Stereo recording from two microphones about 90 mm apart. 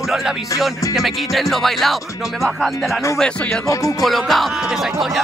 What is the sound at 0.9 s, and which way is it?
Speech, centre (ahead or behind).